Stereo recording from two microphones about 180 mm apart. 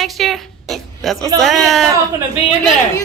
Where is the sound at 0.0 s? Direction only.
Centre (ahead or behind).